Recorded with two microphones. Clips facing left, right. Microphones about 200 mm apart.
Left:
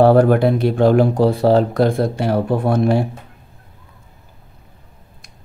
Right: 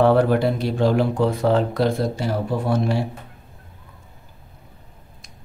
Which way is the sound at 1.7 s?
50° left (ahead or behind).